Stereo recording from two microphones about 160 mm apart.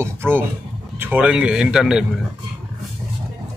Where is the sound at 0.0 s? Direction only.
15° right (ahead or behind).